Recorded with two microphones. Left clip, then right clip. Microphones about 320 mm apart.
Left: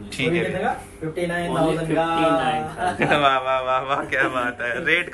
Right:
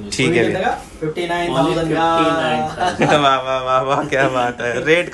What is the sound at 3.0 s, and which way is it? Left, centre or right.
A man's voice, centre.